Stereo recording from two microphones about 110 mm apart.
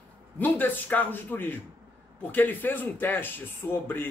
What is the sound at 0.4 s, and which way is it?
Speech, 15° left (ahead or behind).